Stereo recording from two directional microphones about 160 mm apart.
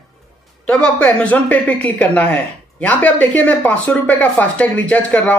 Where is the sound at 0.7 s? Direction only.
5° left (ahead or behind).